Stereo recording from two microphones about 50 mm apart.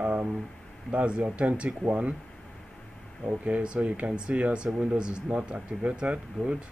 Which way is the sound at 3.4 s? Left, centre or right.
Right.